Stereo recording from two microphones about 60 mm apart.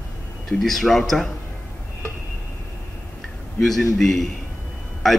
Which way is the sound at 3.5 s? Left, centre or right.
Centre.